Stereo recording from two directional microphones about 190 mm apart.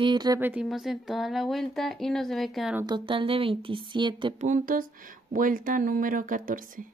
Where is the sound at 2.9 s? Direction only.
25° right (ahead or behind).